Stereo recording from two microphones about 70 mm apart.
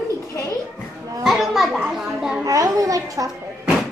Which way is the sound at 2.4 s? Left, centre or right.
Right.